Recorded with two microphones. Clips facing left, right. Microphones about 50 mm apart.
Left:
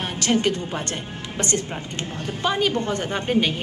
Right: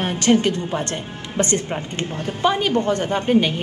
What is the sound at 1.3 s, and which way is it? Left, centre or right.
Speech, right.